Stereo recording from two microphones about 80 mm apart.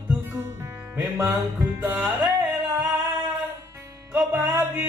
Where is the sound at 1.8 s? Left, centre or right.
Right.